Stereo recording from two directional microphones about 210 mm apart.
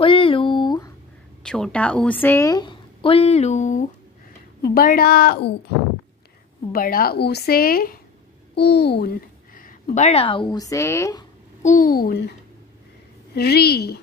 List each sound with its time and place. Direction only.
0.0 s a sound: 25° left (ahead or behind)
1.4 s a woman's voice: 5° left (ahead or behind); by 3.8 s 35° left (ahead or behind)
4.7 s a woman's voice: 45° left (ahead or behind)
6.7 s a woman's voice: 45° left (ahead or behind); by 11.2 s 15° left (ahead or behind)
11.6 s a woman's voice: 40° left (ahead or behind)